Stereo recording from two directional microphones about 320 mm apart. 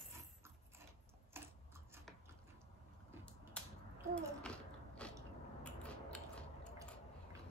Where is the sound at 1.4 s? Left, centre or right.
Centre.